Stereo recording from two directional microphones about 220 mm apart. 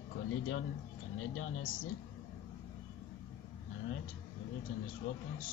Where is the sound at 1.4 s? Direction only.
65° left (ahead or behind).